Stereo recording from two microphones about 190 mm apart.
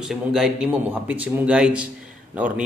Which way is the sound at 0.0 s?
Centre (ahead or behind).